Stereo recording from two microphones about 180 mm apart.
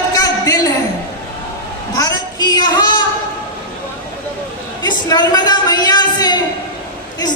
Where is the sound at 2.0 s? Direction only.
20° left (ahead or behind).